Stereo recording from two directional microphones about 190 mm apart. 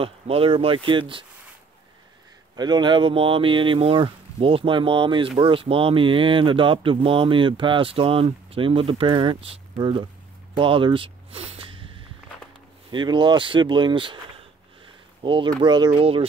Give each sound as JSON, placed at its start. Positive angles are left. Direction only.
{"t": 0.0, "sound": "speech", "side_deg": -30}
{"t": 2.5, "sound": "speech", "side_deg": -20}
{"t": 12.9, "sound": "speech", "side_deg": -25}
{"t": 15.2, "sound": "speech", "side_deg": -25}